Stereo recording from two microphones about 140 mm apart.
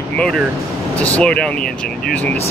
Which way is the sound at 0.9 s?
10° left (ahead or behind).